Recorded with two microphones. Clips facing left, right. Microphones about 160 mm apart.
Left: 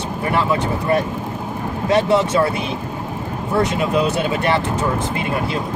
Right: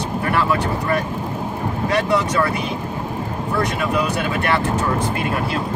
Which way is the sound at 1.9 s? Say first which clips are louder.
Left 4 dB; 25° left (ahead or behind).